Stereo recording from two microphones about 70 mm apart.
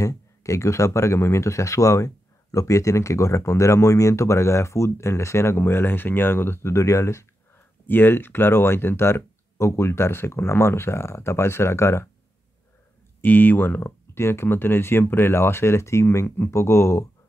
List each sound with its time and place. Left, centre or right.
0.0 s speech: left
7.8 s speech: left
13.2 s speech: left
13.7 s speech: left